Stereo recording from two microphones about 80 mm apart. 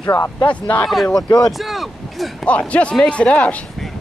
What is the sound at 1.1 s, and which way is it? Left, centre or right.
Speech, left.